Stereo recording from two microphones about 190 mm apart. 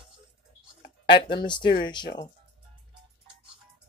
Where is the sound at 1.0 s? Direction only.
25° left (ahead or behind).